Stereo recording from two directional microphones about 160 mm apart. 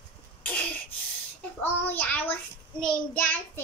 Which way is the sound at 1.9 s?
10° left (ahead or behind).